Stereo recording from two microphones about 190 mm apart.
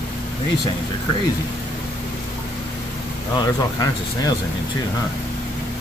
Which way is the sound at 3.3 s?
20° left (ahead or behind).